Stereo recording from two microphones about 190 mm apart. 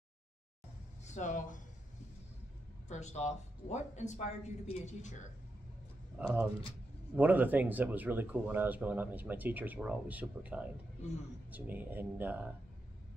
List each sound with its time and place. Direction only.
1.0 s speech: 40° left (ahead or behind)
2.9 s speech: 35° left (ahead or behind)
6.1 s speech: 5° right (ahead or behind)